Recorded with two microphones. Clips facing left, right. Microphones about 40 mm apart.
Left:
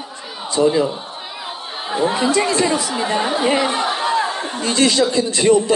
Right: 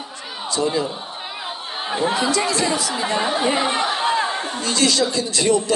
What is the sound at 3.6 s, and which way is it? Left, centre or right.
Speech, centre.